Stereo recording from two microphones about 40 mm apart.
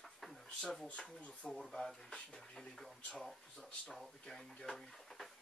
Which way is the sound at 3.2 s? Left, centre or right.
Centre.